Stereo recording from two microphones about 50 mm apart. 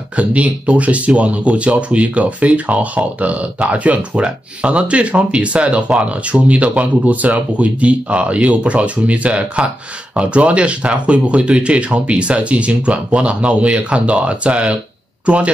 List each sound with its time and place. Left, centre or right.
0.1 s speech: right